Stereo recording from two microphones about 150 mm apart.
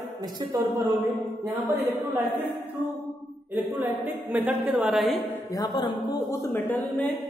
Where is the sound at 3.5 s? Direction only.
15° right (ahead or behind).